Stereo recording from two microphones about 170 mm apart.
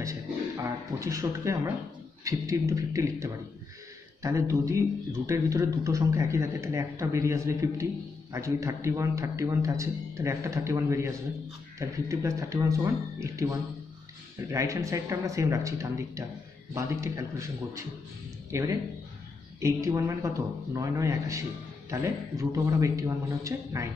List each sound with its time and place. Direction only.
0.0 s speech: 20° right (ahead or behind)